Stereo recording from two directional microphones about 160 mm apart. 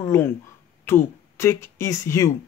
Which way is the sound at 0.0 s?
15° left (ahead or behind).